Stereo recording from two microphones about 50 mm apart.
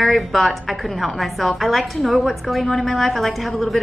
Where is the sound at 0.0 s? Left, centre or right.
Centre.